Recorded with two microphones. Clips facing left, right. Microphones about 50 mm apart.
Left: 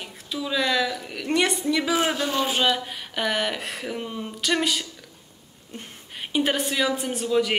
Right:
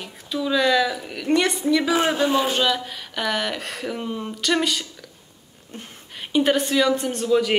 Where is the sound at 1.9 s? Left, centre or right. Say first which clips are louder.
Right 4 dB; right.